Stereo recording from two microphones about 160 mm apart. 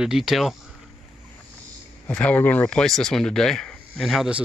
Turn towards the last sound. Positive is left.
turn(degrees=0)  # may be behind; listen again after turning